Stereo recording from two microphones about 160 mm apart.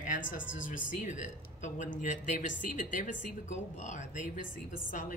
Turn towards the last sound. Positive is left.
turn(degrees=55)  # may be behind; listen again after turning